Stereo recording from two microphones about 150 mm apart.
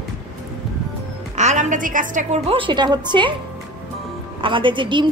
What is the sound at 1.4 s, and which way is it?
A woman's voice, 55° right (ahead or behind).